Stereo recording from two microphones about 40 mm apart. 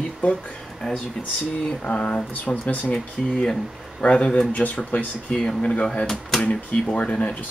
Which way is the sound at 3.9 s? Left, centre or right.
Left.